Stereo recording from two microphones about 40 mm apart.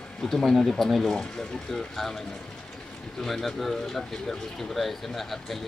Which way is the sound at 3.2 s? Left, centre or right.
Centre.